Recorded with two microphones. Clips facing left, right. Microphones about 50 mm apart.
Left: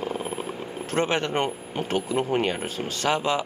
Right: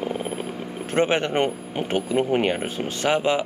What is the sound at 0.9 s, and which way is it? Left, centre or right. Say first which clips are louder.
Speech: right 3 dB; right.